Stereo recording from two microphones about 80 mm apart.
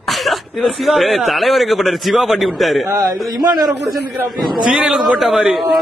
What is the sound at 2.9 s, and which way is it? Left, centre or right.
Speech, right.